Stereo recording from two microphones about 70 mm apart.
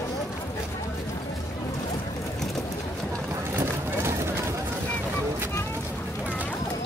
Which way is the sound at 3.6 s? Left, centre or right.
Right.